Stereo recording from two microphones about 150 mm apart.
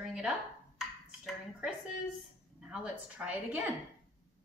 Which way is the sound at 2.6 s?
5° right (ahead or behind).